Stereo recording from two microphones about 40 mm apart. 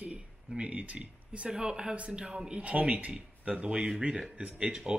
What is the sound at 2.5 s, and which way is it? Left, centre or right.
A man's voice, right.